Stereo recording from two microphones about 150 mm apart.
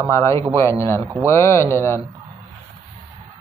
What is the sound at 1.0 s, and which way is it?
Speech, 20° right (ahead or behind).